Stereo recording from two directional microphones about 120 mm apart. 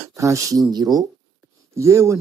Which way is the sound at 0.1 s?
25° right (ahead or behind).